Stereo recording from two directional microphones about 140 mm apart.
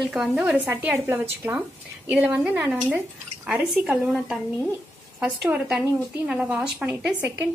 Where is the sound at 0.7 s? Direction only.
20° right (ahead or behind).